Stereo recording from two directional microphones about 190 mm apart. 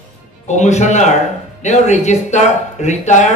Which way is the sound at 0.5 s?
35° left (ahead or behind).